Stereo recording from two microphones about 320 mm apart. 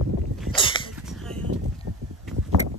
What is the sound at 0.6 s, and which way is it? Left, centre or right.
Dog, centre.